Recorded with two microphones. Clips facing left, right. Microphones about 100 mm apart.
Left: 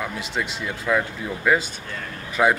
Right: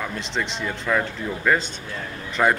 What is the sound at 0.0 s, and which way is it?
Speech, 5° left (ahead or behind).